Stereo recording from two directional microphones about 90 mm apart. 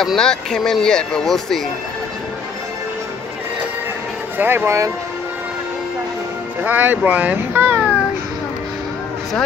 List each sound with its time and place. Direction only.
0.0 s speech: 5° left (ahead or behind)
4.4 s speech: 25° right (ahead or behind)
6.6 s speech: 15° right (ahead or behind)